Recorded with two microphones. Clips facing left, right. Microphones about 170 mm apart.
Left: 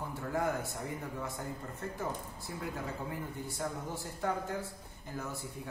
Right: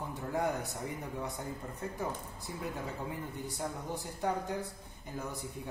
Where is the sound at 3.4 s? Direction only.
20° right (ahead or behind).